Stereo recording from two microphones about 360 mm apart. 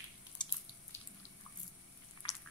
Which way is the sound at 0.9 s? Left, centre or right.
Centre.